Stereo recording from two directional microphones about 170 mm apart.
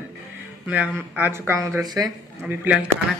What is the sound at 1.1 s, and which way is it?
Speech, 10° right (ahead or behind).